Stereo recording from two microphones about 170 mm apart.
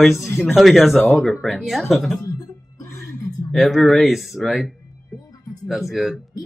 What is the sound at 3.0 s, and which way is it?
Speech, centre (ahead or behind).